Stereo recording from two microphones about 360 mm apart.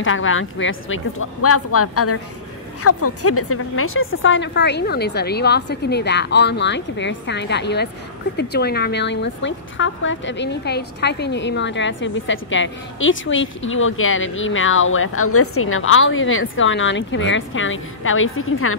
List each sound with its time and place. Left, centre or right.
0.0 s a woman's voice: left